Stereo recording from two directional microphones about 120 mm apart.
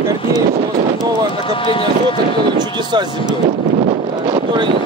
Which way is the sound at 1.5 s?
45° left (ahead or behind).